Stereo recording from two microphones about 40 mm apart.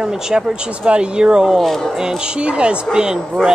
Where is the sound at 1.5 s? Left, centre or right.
Centre.